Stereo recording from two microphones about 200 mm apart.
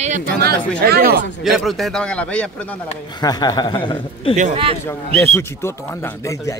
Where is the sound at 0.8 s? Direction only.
50° right (ahead or behind).